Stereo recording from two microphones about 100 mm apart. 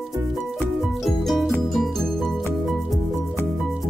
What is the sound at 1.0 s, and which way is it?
Music, centre (ahead or behind).